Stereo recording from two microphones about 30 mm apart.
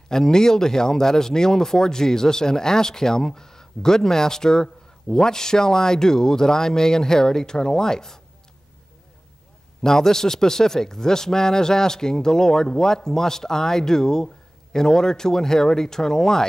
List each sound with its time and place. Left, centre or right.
0.1 s a man's voice: centre
9.8 s a man's voice: centre